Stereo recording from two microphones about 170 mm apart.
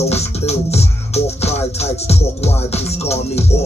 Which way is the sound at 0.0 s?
40° left (ahead or behind).